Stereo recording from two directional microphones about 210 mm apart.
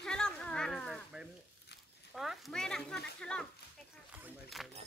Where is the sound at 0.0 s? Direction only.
5° left (ahead or behind).